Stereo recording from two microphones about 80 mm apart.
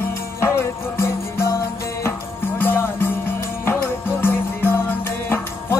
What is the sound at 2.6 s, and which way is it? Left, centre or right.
Music, left.